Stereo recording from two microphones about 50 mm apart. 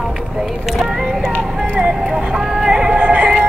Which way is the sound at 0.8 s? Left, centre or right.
Centre.